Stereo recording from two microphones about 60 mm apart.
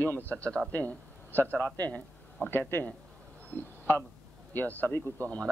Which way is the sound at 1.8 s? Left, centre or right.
Left.